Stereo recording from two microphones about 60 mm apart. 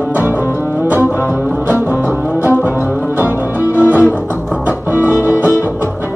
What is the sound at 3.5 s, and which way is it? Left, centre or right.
Music, right.